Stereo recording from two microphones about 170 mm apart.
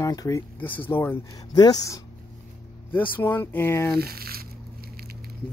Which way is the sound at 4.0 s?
65° right (ahead or behind).